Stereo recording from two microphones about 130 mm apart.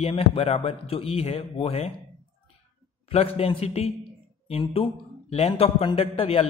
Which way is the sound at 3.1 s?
50° left (ahead or behind).